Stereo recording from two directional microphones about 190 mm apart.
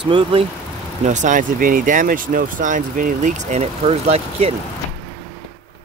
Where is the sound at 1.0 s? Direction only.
40° right (ahead or behind).